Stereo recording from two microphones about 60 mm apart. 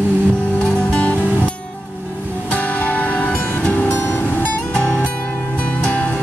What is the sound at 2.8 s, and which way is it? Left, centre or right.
Music, left.